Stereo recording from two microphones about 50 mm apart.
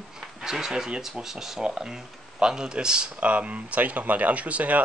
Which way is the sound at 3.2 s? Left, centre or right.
Right.